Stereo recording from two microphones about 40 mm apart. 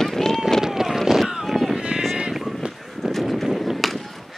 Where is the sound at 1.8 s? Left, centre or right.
Right.